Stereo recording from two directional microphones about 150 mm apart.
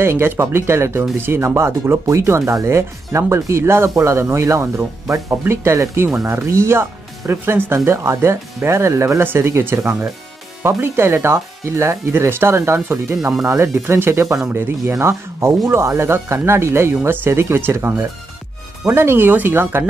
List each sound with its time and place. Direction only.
0.0 s speech: 15° right (ahead or behind)